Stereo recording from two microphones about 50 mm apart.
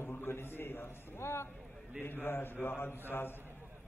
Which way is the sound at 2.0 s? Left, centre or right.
Left.